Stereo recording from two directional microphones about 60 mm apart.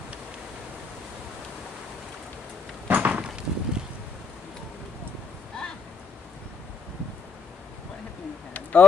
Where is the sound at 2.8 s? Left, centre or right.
Right.